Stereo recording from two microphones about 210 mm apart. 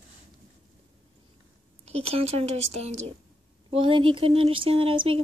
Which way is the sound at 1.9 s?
30° right (ahead or behind).